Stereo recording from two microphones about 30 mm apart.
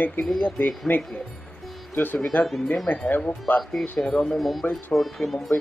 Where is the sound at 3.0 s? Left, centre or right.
Left.